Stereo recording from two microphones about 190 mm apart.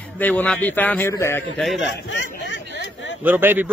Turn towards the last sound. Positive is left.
turn(degrees=-10)  # may be behind; listen again after turning